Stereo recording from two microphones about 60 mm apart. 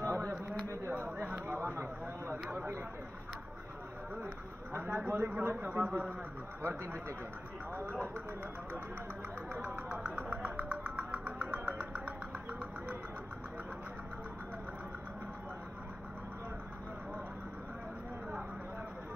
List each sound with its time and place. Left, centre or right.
0.0 s a sound: right
0.9 s a sound: right
4.7 s speech: right
5.9 s a man's voice: right
6.8 s speech: right
7.7 s speech: right
9.5 s music: right
9.8 s music: right